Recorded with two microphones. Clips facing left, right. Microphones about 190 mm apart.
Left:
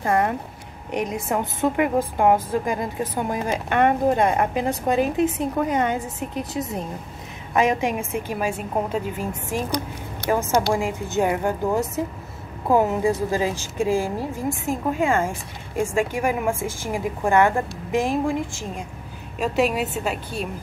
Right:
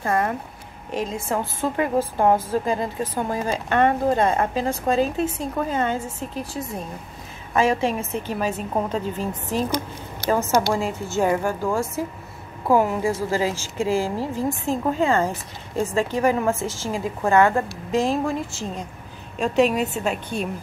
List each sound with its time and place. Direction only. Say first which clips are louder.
0.0 s a woman's voice: left 2 dB; 20° left (ahead or behind); by 20.4 s 5° left (ahead or behind)